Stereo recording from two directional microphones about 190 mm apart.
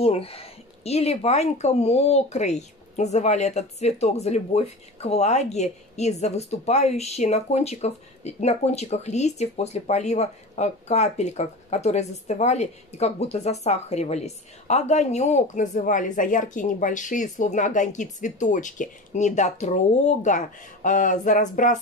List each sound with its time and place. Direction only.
0.0 s speech: 30° left (ahead or behind)